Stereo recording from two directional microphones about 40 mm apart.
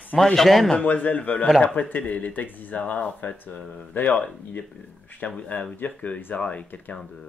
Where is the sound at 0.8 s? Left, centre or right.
Left.